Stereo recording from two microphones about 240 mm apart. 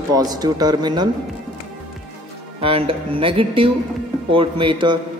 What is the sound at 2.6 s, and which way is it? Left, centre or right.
A man's voice, right.